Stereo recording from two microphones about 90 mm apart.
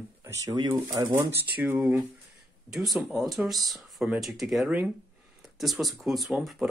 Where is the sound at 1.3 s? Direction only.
20° right (ahead or behind).